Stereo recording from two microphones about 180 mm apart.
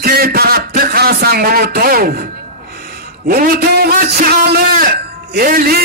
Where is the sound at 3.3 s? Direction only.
55° right (ahead or behind).